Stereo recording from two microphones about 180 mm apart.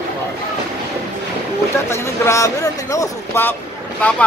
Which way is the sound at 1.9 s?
15° left (ahead or behind).